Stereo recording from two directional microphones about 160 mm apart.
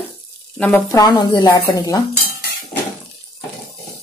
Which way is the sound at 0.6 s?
10° left (ahead or behind).